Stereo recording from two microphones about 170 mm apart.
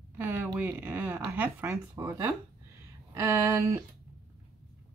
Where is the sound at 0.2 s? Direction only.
10° right (ahead or behind).